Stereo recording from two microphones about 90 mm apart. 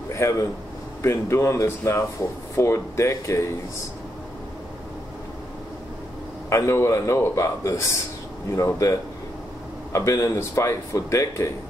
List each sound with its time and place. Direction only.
0.1 s a man's voice: 35° left (ahead or behind)
6.5 s speech: 30° left (ahead or behind)
9.9 s speech: 35° left (ahead or behind)